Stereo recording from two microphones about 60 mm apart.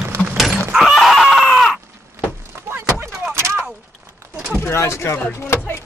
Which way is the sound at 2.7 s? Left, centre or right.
Right.